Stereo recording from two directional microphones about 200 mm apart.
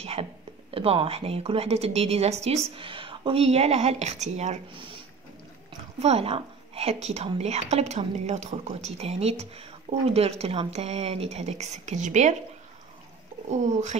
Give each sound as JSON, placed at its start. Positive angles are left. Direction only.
{"t": 0.0, "sound": "speech", "side_deg": -30}
{"t": 5.9, "sound": "a woman's voice", "side_deg": -30}
{"t": 13.5, "sound": "a woman's voice", "side_deg": -35}